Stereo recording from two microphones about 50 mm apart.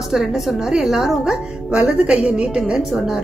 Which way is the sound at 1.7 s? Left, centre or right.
Centre.